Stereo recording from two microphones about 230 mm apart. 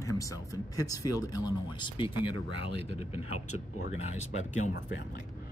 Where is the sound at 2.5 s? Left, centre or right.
Right.